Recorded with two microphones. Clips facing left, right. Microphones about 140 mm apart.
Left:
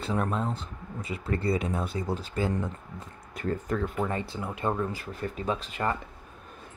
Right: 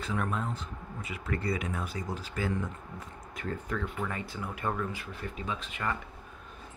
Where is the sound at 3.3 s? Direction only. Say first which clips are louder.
Left 5 dB; 40° left (ahead or behind).